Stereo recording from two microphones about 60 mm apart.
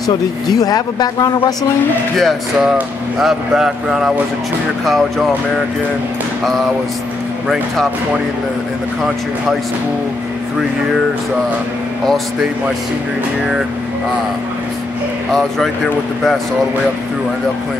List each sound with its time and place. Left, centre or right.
0.5 s speech: left
2.1 s speech: centre
7.4 s speech: centre
15.3 s speech: centre